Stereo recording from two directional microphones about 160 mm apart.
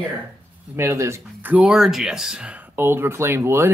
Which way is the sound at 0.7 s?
15° right (ahead or behind).